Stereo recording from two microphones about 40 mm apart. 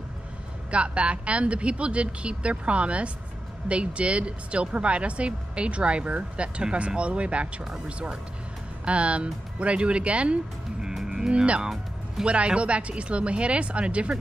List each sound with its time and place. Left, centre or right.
0.7 s speech: right
8.8 s speech: right
11.6 s music: centre
12.3 s speech: right